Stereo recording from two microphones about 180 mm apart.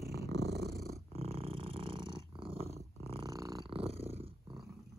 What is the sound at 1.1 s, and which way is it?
Purr, 35° right (ahead or behind).